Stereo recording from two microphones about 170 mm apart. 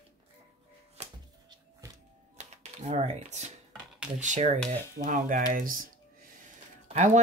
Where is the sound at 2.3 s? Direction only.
40° right (ahead or behind).